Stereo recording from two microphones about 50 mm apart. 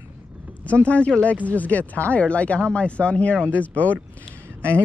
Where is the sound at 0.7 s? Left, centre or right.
Left.